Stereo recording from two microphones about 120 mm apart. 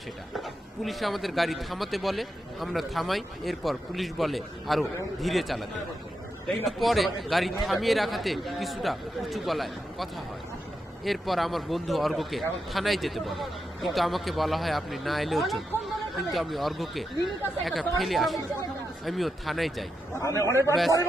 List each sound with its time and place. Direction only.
0.4 s a man's voice: centre (ahead or behind)
11.1 s a man's voice: centre (ahead or behind)
20.2 s a man's voice: 25° left (ahead or behind)